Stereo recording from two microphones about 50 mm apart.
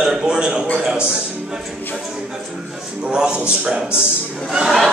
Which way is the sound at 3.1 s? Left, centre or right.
Centre.